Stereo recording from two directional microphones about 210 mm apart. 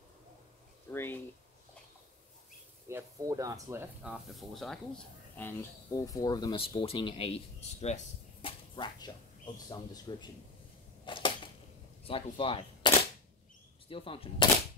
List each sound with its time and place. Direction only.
0.9 s speech: 10° left (ahead or behind)
2.9 s speech: 15° right (ahead or behind)
4.0 s speech: centre (ahead or behind); by 10.3 s 20° left (ahead or behind)
11.1 s a sound: 25° left (ahead or behind)
12.0 s speech: 25° left (ahead or behind)